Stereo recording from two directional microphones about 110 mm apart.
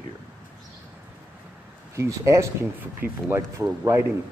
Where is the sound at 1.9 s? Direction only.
25° right (ahead or behind).